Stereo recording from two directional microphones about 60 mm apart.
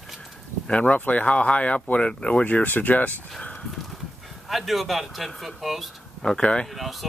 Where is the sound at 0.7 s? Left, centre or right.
Left.